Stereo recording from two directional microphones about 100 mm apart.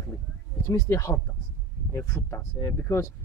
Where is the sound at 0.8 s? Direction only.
30° left (ahead or behind).